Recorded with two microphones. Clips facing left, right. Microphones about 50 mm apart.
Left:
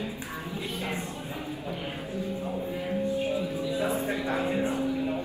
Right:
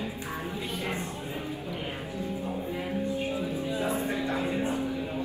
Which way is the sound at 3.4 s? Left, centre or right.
Right.